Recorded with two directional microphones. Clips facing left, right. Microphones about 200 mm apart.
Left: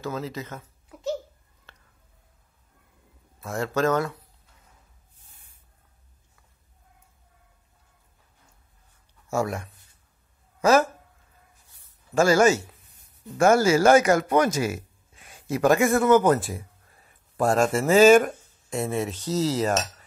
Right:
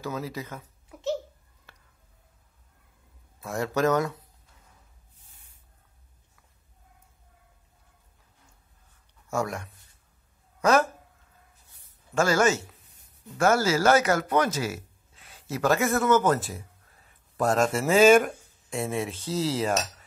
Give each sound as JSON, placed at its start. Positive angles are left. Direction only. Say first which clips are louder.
{"t": 0.0, "sound": "speech", "louder": "left 2 dB", "side_deg": -10}
{"t": 3.4, "sound": "speech", "louder": "left 1 dB", "side_deg": -15}
{"t": 9.3, "sound": "cutlery", "louder": "left 3 dB", "side_deg": 5}
{"t": 10.6, "sound": "speech", "louder": "left 3 dB", "side_deg": 5}
{"t": 12.1, "sound": "speech", "louder": "left 4 dB", "side_deg": 10}
{"t": 17.4, "sound": "cutlery", "louder": "left 2 dB", "side_deg": 5}